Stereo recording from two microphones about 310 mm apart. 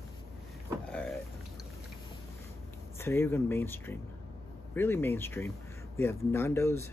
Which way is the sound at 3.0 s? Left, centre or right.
Centre.